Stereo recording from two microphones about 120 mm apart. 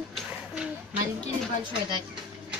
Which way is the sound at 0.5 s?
10° right (ahead or behind).